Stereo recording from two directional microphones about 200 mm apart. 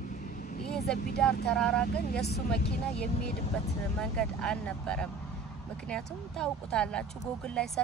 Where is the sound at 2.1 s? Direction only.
55° left (ahead or behind).